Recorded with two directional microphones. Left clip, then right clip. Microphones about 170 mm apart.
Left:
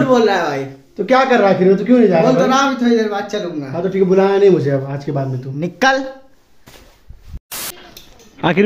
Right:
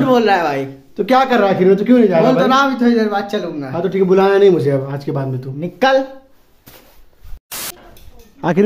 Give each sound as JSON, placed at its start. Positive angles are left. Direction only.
{"t": 0.0, "sound": "a man's voice", "side_deg": -40}
{"t": 0.9, "sound": "speech", "side_deg": -15}
{"t": 2.2, "sound": "a man's voice", "side_deg": -40}
{"t": 3.7, "sound": "a man's voice", "side_deg": -20}
{"t": 5.6, "sound": "speech", "side_deg": 15}
{"t": 7.4, "sound": "a sound", "side_deg": 0}
{"t": 8.4, "sound": "speech", "side_deg": 10}